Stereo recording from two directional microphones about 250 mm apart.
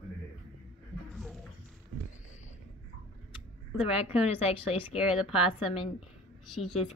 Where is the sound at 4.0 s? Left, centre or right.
Left.